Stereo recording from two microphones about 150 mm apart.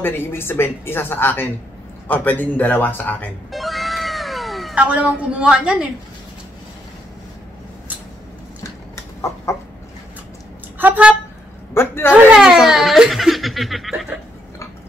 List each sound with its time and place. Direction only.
0.0 s speech: 15° left (ahead or behind)
3.5 s cat: centre (ahead or behind)
9.5 s chicken: 20° left (ahead or behind)
10.8 s a sound: 10° right (ahead or behind)
11.7 s a sound: 15° left (ahead or behind)
12.1 s giggle: 5° right (ahead or behind)